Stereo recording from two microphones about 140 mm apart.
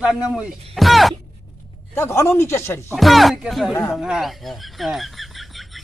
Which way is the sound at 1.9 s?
20° left (ahead or behind).